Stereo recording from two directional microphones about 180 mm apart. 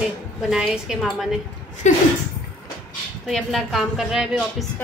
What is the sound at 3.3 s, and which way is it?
A woman's voice, centre (ahead or behind).